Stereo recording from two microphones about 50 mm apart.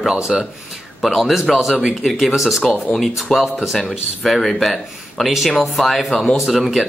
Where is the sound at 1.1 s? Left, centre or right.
Centre.